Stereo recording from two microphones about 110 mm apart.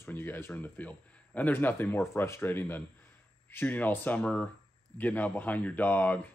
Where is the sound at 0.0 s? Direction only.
20° left (ahead or behind).